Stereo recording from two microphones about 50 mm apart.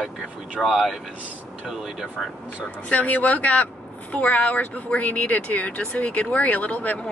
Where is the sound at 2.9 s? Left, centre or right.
Left.